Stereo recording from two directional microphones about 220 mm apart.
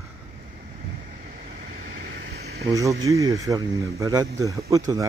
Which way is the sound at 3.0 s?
15° right (ahead or behind).